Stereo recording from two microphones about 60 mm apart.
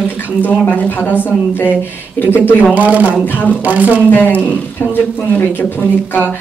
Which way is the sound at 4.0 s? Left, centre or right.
Left.